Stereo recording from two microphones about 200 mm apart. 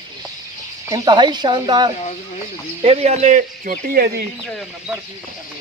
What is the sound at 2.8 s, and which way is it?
Speech, 35° right (ahead or behind).